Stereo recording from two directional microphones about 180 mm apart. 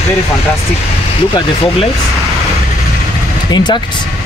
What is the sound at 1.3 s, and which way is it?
Speech, 30° left (ahead or behind).